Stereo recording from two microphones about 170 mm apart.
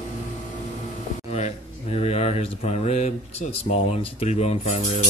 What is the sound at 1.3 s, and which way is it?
Speech, 40° left (ahead or behind).